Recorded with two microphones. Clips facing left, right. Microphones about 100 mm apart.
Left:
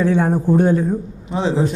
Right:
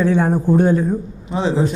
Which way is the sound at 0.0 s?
15° right (ahead or behind).